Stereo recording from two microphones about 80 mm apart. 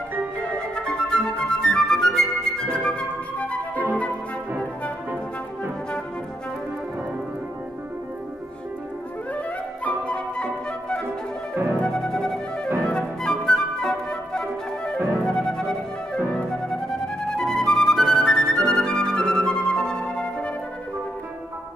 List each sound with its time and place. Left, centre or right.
0.6 s flute: centre
9.8 s flute: centre
11.7 s music: centre
12.8 s flute: centre
15.2 s music: centre